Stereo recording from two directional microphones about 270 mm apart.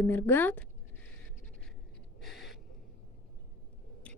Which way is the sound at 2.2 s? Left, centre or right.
Centre.